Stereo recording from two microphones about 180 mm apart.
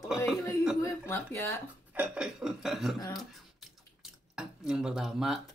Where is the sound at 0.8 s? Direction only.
15° left (ahead or behind).